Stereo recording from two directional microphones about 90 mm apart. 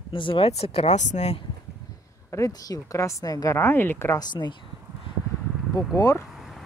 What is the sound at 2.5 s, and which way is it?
A woman's voice, 40° left (ahead or behind).